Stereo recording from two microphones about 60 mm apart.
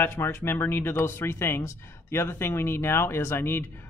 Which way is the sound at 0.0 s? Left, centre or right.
Left.